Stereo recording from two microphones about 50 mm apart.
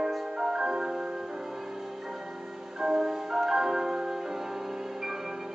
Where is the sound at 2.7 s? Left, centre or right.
Centre.